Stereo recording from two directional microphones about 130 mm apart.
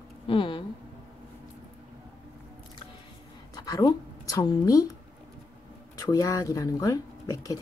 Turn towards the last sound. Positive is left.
turn(degrees=25)  # may be behind; listen again after turning